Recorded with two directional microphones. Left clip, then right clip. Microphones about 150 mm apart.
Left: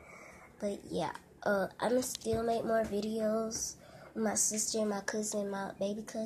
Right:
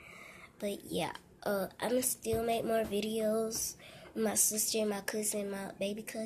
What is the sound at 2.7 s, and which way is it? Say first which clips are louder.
A woman's voice: even; 5° right (ahead or behind).